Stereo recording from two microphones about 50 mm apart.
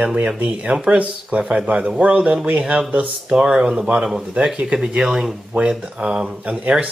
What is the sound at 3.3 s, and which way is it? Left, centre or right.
Speech, centre.